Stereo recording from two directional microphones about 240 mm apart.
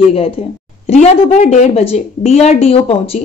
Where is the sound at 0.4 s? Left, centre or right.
Left.